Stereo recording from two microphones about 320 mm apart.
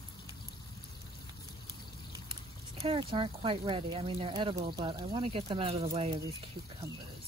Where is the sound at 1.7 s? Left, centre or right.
Centre.